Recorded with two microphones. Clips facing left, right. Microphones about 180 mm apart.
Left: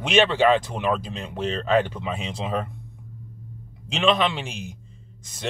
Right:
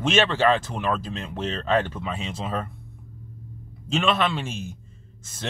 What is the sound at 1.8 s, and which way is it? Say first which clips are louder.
Speech: left 2 dB; 15° left (ahead or behind).